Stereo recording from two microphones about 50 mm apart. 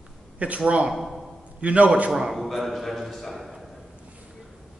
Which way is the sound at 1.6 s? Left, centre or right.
Right.